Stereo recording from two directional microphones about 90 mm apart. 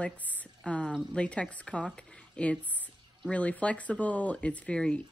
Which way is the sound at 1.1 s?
10° left (ahead or behind).